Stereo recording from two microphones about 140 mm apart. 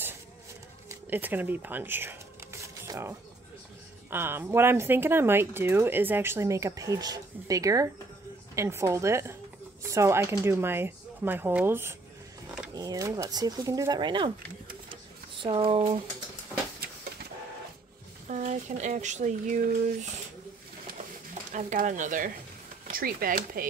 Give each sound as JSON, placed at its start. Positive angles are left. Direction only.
{"t": 0.8, "sound": "a sound", "side_deg": -15}
{"t": 4.1, "sound": "speech", "side_deg": -15}
{"t": 15.4, "sound": "speech", "side_deg": -40}
{"t": 18.3, "sound": "speech", "side_deg": -60}
{"t": 21.5, "sound": "speech", "side_deg": -65}
{"t": 22.8, "sound": "speech", "side_deg": -90}